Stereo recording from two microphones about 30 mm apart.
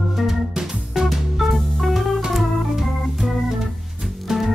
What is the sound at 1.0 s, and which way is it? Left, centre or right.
Music, centre.